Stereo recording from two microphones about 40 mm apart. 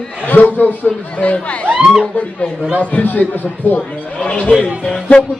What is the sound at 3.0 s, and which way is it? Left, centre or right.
Speech, left.